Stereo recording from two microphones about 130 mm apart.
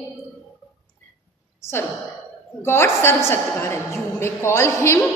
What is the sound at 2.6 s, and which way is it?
A woman's voice, 20° left (ahead or behind).